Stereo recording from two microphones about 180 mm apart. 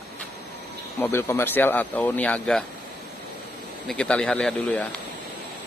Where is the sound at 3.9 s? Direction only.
5° left (ahead or behind).